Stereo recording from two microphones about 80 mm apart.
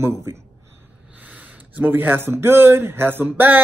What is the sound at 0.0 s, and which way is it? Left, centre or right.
Speech, right.